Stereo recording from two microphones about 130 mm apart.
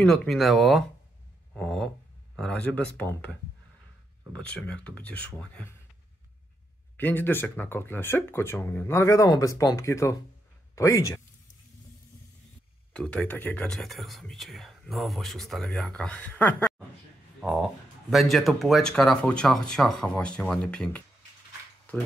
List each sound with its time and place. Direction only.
0.0 s speech: 5° left (ahead or behind)
1.5 s a sound: centre (ahead or behind)
2.3 s speech: 5° left (ahead or behind)
4.3 s speech: 10° left (ahead or behind)
7.0 s speech: 15° left (ahead or behind)
12.9 s speech: 10° left (ahead or behind)
17.4 s speech: centre (ahead or behind)